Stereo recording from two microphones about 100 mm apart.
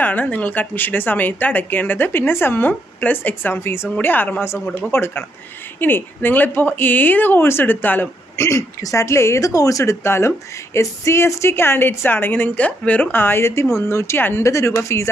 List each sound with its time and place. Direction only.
0.0 s a woman's voice: 15° left (ahead or behind)